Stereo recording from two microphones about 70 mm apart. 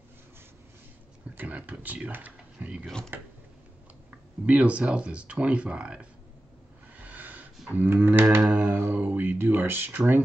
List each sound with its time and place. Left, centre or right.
1.3 s speech: right
4.5 s speech: centre
7.0 s a sound: right
7.7 s speech: right